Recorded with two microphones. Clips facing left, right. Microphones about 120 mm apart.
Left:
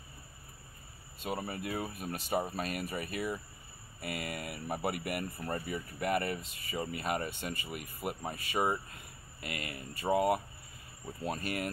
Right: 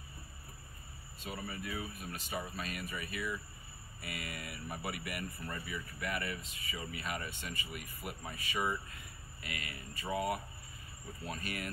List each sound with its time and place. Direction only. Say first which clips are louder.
1.3 s speech: left 5 dB; 50° left (ahead or behind)